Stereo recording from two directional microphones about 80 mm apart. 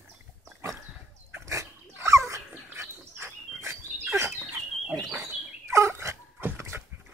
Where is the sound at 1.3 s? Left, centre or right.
Right.